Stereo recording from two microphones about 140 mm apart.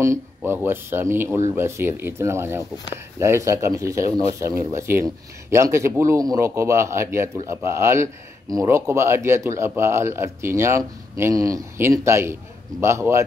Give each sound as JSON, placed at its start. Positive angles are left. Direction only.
{"t": 0.0, "sound": "speech", "side_deg": -20}